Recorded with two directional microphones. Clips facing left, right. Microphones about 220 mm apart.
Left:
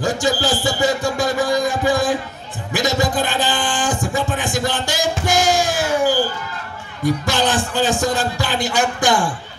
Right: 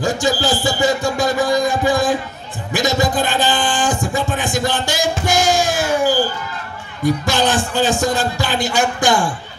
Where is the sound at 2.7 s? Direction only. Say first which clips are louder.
Right 1 dB; 25° right (ahead or behind).